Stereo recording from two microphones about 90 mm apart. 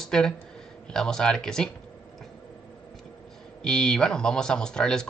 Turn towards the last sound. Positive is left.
turn(degrees=10)  # may be behind; listen again after turning